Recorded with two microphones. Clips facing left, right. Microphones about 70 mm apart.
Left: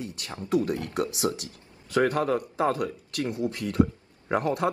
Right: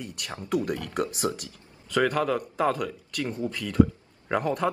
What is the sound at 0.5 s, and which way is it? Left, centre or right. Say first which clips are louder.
Speech: left 2 dB; right.